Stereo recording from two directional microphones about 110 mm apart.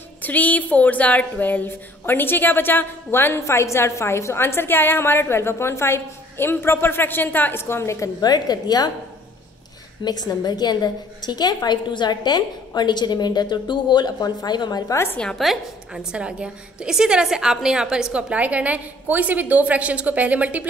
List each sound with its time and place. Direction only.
0.2 s speech: 15° left (ahead or behind)
8.2 s a woman's voice: 40° left (ahead or behind)
10.0 s a woman's voice: 40° left (ahead or behind)
15.1 s a woman's voice: 5° left (ahead or behind); by 20.6 s 15° right (ahead or behind)